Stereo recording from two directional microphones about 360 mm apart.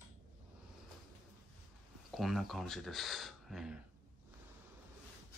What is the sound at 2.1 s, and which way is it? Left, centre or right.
Speech, centre.